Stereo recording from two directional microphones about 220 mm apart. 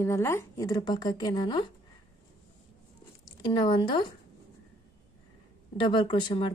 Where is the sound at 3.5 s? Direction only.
20° left (ahead or behind).